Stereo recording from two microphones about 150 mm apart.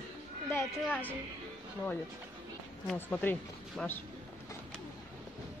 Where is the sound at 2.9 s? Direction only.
10° left (ahead or behind).